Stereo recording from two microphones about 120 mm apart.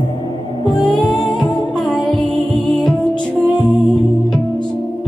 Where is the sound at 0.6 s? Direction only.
40° left (ahead or behind).